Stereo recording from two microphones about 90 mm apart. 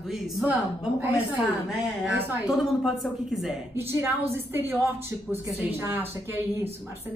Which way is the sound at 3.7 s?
30° right (ahead or behind).